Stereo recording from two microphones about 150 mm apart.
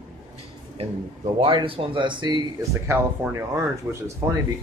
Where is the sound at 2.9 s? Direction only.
20° right (ahead or behind).